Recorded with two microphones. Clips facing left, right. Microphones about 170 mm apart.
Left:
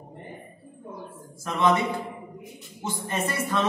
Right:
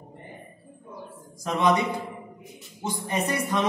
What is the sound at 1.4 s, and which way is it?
A man's voice, 15° right (ahead or behind).